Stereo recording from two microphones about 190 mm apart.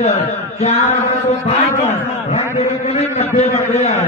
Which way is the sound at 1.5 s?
35° left (ahead or behind).